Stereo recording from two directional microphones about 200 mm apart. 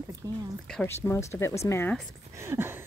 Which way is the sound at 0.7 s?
5° left (ahead or behind).